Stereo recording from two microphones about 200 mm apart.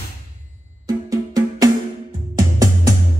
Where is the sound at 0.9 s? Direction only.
20° right (ahead or behind).